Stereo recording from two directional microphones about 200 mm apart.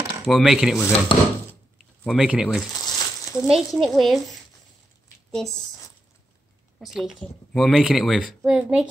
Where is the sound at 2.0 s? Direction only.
5° right (ahead or behind).